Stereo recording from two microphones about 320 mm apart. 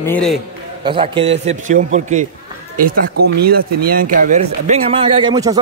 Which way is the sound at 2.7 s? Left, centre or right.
Right.